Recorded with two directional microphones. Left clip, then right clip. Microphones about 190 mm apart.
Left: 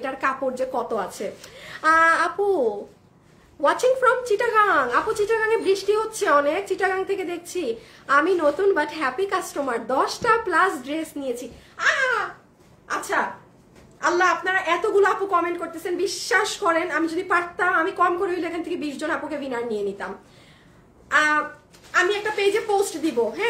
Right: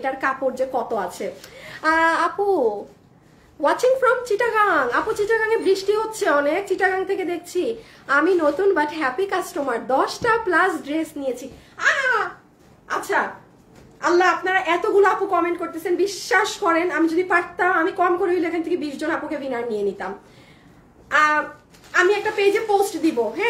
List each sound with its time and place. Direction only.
0.0 s a woman's voice: 10° left (ahead or behind)
21.1 s a woman's voice: 10° left (ahead or behind)